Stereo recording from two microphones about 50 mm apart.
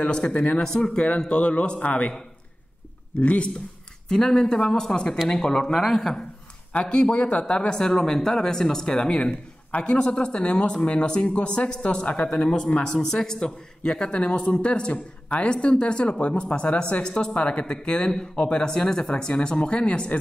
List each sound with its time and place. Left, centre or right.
0.0 s speech: left
3.2 s speech: left
4.1 s speech: centre
6.7 s speech: left